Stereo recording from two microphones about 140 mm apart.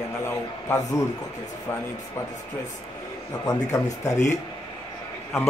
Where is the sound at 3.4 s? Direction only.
25° left (ahead or behind).